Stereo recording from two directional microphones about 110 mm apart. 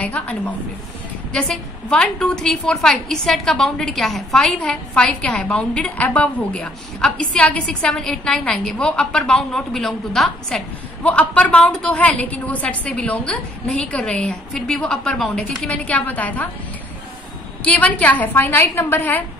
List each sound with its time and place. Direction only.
0.0 s a woman's voice: 10° left (ahead or behind)
17.6 s a woman's voice: 15° left (ahead or behind)